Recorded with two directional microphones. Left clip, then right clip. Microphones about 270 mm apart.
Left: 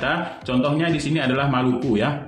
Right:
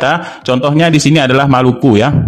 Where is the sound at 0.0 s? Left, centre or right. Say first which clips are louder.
Right 10 dB; right.